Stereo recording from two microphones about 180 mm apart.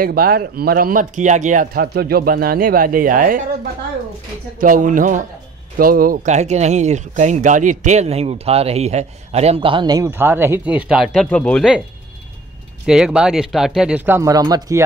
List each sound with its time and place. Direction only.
0.0 s speech: 55° right (ahead or behind)
4.6 s speech: 50° right (ahead or behind); by 11.8 s centre (ahead or behind)
12.8 s speech: 5° right (ahead or behind); by 14.8 s 20° right (ahead or behind)